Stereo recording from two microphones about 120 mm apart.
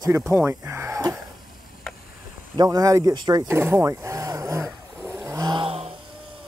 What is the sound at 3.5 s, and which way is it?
Roaring cats, 20° right (ahead or behind).